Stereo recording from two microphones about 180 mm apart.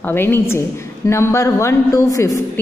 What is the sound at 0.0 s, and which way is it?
A woman's voice, 10° left (ahead or behind).